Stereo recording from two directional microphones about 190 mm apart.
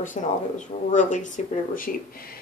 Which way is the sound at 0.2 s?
40° left (ahead or behind).